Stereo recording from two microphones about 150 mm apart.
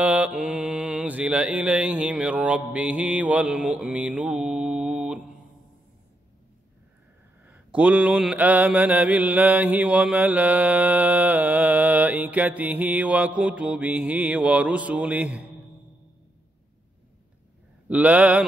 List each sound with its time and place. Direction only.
0.0 s mantra: 10° right (ahead or behind)
7.4 s mantra: 10° right (ahead or behind)
17.8 s mantra: 10° right (ahead or behind)